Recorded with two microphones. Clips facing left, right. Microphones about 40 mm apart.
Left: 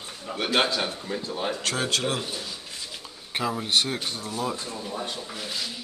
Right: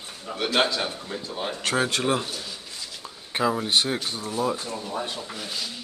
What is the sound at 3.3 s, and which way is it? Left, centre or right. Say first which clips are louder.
Speech: right 2 dB; centre.